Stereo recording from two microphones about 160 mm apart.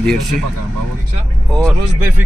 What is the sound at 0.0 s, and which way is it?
Speech, centre (ahead or behind).